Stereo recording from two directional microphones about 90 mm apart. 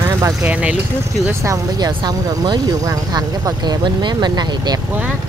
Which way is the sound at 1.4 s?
45° right (ahead or behind).